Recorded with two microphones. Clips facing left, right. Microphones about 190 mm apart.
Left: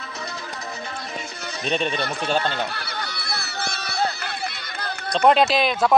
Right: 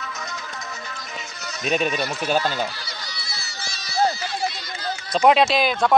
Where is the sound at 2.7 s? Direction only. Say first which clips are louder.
Left 5 dB; 60° left (ahead or behind).